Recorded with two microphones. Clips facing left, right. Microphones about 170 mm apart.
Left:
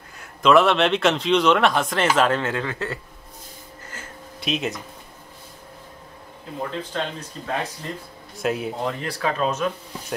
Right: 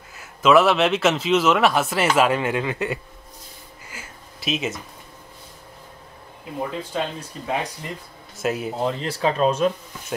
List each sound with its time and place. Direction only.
0.1 s speech: 5° right (ahead or behind)
3.8 s a sound: 10° right (ahead or behind)
6.6 s speech: 10° right (ahead or behind)
8.8 s speech: 25° right (ahead or behind)